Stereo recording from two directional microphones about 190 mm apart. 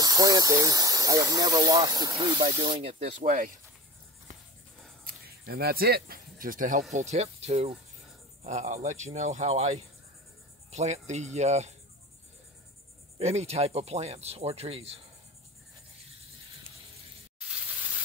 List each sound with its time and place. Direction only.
0.0 s speech: 20° right (ahead or behind); by 3.5 s 45° right (ahead or behind)
5.0 s speech: 55° right (ahead or behind)
7.1 s speech: 35° right (ahead or behind)
13.2 s speech: 35° right (ahead or behind)